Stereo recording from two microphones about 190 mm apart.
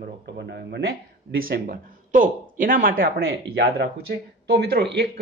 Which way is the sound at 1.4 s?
50° right (ahead or behind).